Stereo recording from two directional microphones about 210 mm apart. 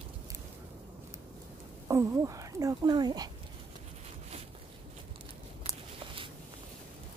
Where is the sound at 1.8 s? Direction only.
15° right (ahead or behind).